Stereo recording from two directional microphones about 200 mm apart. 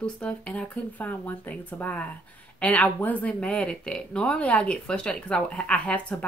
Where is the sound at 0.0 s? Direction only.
5° left (ahead or behind).